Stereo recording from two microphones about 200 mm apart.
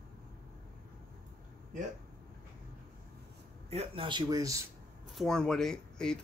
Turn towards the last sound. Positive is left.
turn(degrees=5)  # may be behind; listen again after turning